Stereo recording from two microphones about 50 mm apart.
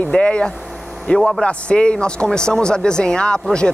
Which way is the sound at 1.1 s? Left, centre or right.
Centre.